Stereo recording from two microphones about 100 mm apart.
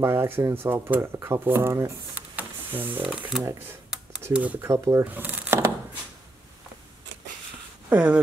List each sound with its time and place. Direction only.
0.0 s speech: 25° right (ahead or behind)
2.1 s a sound: 20° right (ahead or behind)
3.0 s speech: 5° right (ahead or behind)
4.3 s speech: 15° right (ahead or behind)
4.6 s speech: 30° right (ahead or behind)
5.0 s speech: 15° right (ahead or behind)
7.9 s speech: 15° right (ahead or behind)